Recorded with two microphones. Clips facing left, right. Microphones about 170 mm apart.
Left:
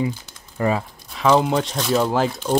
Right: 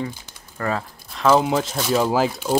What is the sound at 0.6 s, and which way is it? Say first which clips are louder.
Speech: left 4 dB; 15° left (ahead or behind).